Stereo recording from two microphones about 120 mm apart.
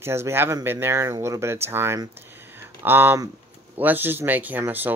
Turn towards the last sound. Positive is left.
turn(degrees=-15)  # may be behind; listen again after turning